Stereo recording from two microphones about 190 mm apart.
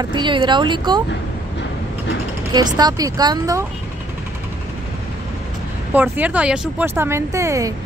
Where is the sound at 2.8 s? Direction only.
20° right (ahead or behind).